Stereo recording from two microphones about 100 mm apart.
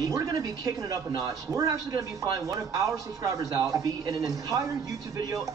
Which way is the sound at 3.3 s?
35° right (ahead or behind).